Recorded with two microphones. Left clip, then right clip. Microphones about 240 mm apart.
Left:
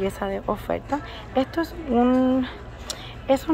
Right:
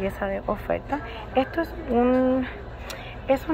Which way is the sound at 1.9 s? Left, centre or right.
Left.